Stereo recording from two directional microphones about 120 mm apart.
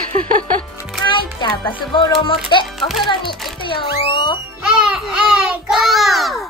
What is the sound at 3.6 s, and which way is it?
Speech, 45° left (ahead or behind).